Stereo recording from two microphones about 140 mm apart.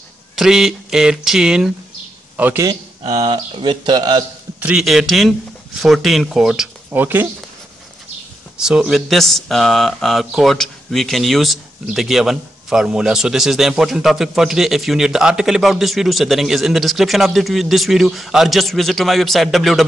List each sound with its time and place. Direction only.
0.4 s a man's voice: 5° right (ahead or behind)
3.1 s speech: 30° right (ahead or behind)
4.6 s speech: 10° right (ahead or behind)
8.5 s speech: 5° right (ahead or behind)